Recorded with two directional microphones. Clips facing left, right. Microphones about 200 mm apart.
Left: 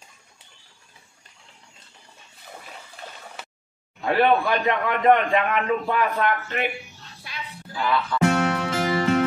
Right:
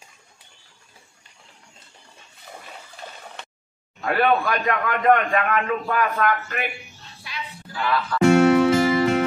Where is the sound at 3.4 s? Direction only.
5° left (ahead or behind).